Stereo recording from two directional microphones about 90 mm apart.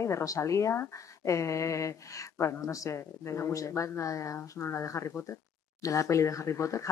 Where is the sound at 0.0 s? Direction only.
35° left (ahead or behind).